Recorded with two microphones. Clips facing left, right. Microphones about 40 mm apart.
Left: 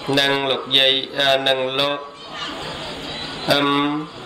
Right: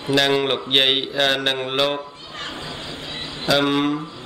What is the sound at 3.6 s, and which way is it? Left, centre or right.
Speech, centre.